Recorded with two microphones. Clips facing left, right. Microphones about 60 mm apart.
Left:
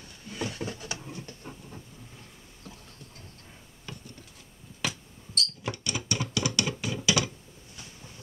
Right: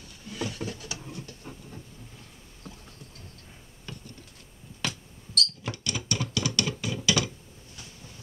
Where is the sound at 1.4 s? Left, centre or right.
Centre.